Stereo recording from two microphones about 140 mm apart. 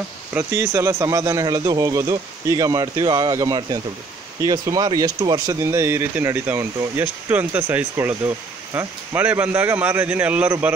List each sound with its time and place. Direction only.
0.3 s speech: 20° right (ahead or behind)